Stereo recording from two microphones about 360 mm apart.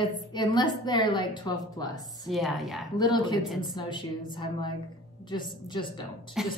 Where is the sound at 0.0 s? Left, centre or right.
Centre.